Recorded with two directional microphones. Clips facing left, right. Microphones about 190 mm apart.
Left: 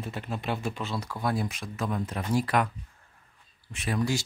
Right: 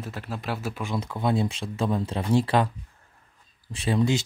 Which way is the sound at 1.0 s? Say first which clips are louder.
Right 7 dB; 25° right (ahead or behind).